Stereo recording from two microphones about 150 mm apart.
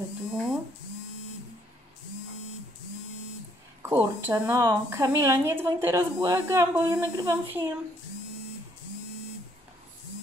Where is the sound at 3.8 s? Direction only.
15° right (ahead or behind).